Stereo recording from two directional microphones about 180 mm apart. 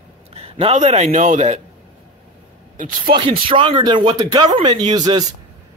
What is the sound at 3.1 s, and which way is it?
Speech, 30° right (ahead or behind).